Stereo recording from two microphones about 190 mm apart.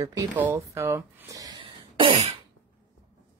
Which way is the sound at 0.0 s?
15° right (ahead or behind).